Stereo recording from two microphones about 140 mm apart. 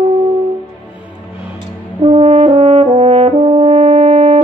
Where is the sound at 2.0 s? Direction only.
40° right (ahead or behind).